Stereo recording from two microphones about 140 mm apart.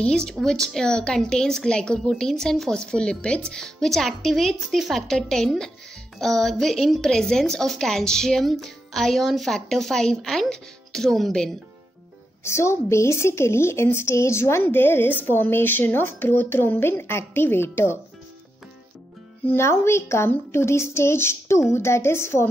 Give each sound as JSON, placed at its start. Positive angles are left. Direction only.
{"t": 0.0, "sound": "a woman's voice", "side_deg": 5}
{"t": 12.4, "sound": "a woman's voice", "side_deg": 20}
{"t": 19.4, "sound": "a woman's voice", "side_deg": 20}